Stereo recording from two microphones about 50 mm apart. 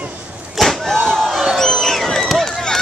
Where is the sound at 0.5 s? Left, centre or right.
Centre.